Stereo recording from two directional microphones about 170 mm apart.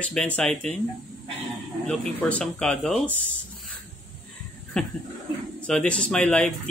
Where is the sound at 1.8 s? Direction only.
5° left (ahead or behind).